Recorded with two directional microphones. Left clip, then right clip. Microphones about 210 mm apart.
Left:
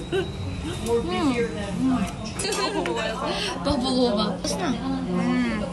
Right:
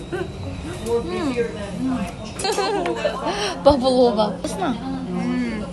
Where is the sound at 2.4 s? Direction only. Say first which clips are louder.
Right 4 dB; centre (ahead or behind).